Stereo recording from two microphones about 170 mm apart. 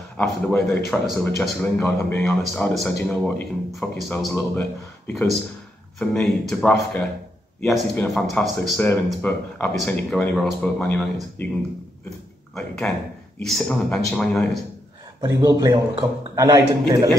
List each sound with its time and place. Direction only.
0.2 s a man's voice: 5° left (ahead or behind)
1.8 s speech: 15° left (ahead or behind)
2.2 s a man's voice: centre (ahead or behind)
12.5 s a man's voice: centre (ahead or behind)
15.1 s a man's voice: 20° right (ahead or behind)